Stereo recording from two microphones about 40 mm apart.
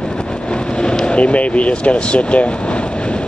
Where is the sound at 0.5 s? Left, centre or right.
Left.